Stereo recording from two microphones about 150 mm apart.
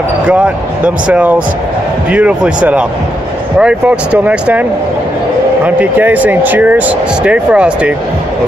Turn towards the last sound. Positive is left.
turn(degrees=-10)  # may be behind; listen again after turning